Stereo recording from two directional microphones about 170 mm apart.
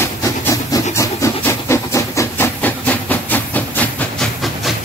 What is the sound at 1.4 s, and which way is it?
Steam, 15° left (ahead or behind).